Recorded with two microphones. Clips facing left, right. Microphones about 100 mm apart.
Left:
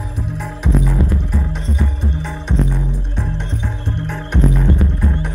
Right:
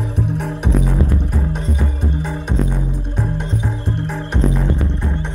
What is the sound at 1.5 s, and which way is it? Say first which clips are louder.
Music: right 1 dB; 45° right (ahead or behind).